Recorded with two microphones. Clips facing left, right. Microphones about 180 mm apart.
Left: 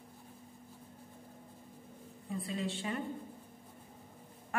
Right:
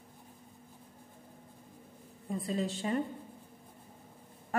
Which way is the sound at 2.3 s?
40° right (ahead or behind).